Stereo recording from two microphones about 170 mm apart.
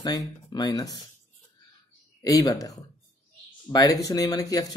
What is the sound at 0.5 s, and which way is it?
Speech, 25° left (ahead or behind).